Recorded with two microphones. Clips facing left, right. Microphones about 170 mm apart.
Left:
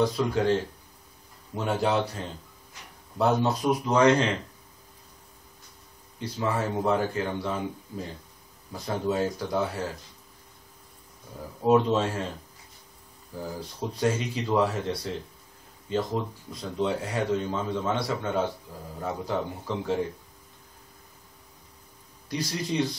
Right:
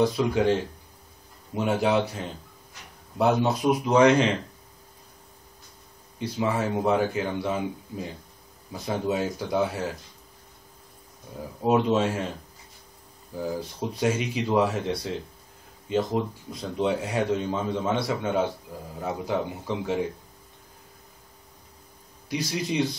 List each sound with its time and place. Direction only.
0.2 s a man's voice: 15° right (ahead or behind)
1.5 s a man's voice: 15° right (ahead or behind)
3.2 s a man's voice: 15° right (ahead or behind)
6.1 s a man's voice: 15° right (ahead or behind)
11.6 s a man's voice: 15° right (ahead or behind)
13.7 s a man's voice: 15° right (ahead or behind)
22.3 s a man's voice: 15° right (ahead or behind)